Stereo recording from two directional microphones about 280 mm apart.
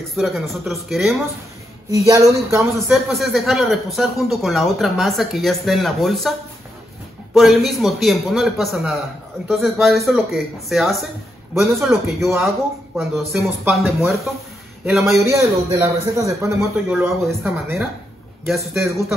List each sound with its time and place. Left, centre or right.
0.1 s a man's voice: centre
1.9 s a man's voice: centre
7.3 s a man's voice: centre